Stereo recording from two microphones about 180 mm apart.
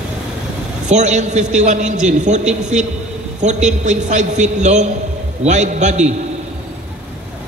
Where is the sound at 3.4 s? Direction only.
40° right (ahead or behind).